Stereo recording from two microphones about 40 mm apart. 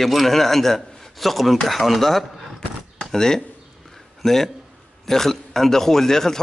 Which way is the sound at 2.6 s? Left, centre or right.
Centre.